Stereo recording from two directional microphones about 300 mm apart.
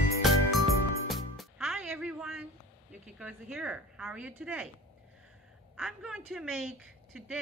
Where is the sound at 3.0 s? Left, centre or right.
Centre.